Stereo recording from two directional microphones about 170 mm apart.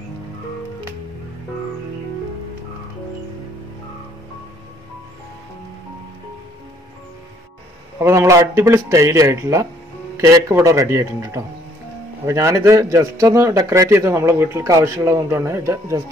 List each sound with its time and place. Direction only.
8.0 s a man's voice: 15° right (ahead or behind)